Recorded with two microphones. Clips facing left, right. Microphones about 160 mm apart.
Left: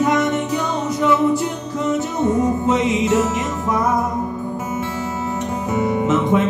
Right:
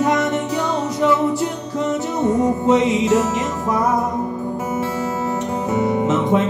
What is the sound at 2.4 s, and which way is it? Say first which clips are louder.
Music: right 2 dB; 35° right (ahead or behind).